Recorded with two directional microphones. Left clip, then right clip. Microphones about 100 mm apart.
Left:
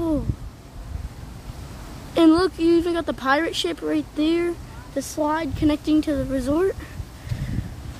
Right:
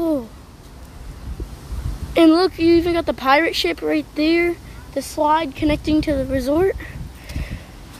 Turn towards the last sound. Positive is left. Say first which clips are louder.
# right 4 dB
turn(degrees=-10)  # may be behind; listen again after turning